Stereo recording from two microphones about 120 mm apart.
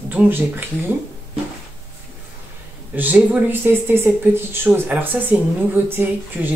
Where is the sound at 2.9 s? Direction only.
15° right (ahead or behind).